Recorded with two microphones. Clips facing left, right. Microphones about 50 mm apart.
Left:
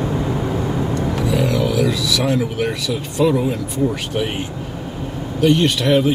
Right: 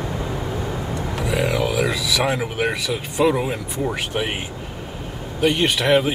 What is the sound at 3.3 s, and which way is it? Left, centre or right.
Speech, right.